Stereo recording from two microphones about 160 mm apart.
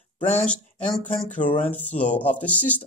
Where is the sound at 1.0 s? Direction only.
50° left (ahead or behind).